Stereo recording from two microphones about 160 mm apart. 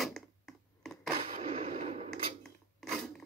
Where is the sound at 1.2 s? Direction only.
40° right (ahead or behind).